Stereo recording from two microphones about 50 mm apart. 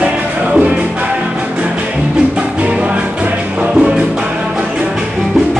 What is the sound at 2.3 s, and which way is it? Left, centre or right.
Music, right.